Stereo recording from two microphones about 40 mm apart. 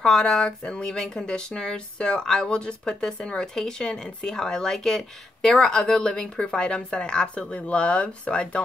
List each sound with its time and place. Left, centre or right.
0.0 s speech: centre